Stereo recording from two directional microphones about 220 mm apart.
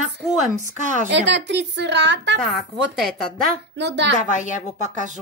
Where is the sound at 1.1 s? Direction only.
55° right (ahead or behind).